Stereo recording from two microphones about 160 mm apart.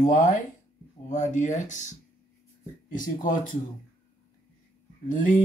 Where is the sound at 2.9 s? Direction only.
55° left (ahead or behind).